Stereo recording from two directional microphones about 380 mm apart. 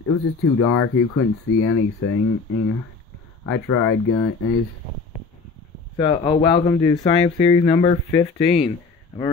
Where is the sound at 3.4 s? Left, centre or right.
Left.